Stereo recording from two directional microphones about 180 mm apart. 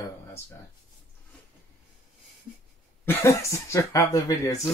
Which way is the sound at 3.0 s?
15° left (ahead or behind).